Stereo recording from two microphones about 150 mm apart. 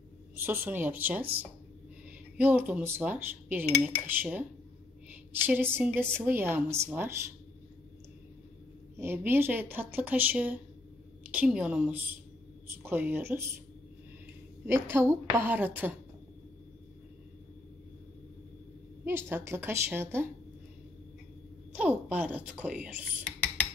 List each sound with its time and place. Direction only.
0.4 s a woman's voice: 15° right (ahead or behind)
2.3 s a woman's voice: 10° right (ahead or behind)
8.9 s a woman's voice: 15° right (ahead or behind)
14.7 s a woman's voice: 15° right (ahead or behind)
19.0 s a woman's voice: 15° right (ahead or behind)
21.7 s a woman's voice: 10° right (ahead or behind)